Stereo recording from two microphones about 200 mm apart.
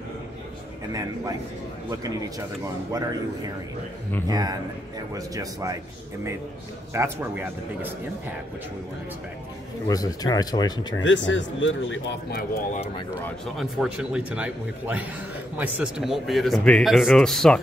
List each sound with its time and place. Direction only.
1.9 s a man's voice: 20° right (ahead or behind)
4.3 s a man's voice: 20° right (ahead or behind)
6.9 s a man's voice: 15° right (ahead or behind)
9.8 s speech: 20° left (ahead or behind)
11.0 s speech: 70° left (ahead or behind)
12.3 s speech: 50° left (ahead or behind)
13.2 s speech: centre (ahead or behind)